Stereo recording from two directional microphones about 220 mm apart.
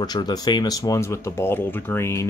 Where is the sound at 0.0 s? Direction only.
20° left (ahead or behind).